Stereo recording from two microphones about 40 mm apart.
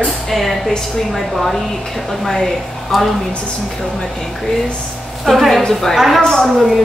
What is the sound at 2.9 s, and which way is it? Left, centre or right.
Speech, centre.